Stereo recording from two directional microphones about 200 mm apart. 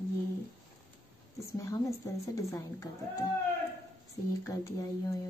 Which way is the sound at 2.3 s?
15° left (ahead or behind).